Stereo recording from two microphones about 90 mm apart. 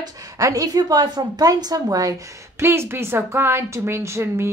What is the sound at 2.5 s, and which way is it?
A woman's voice, 30° right (ahead or behind).